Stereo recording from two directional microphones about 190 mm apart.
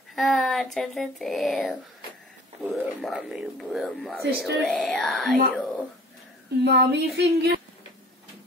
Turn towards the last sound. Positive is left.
turn(degrees=-60)  # may be behind; listen again after turning